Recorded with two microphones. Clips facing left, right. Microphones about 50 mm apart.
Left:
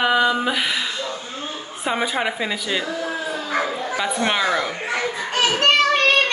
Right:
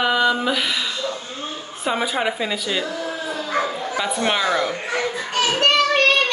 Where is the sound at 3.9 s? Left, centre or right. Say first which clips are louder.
Even; centre.